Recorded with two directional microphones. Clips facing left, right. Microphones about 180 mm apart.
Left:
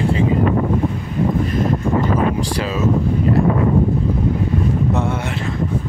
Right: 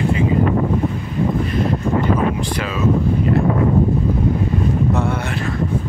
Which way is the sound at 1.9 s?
35° left (ahead or behind).